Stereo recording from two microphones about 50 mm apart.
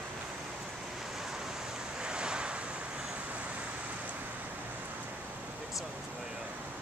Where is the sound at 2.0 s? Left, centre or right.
Centre.